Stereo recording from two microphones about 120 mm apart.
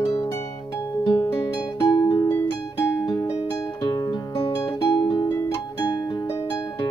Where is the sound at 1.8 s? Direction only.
40° left (ahead or behind).